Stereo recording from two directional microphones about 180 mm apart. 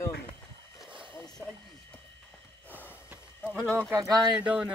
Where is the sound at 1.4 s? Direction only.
15° right (ahead or behind).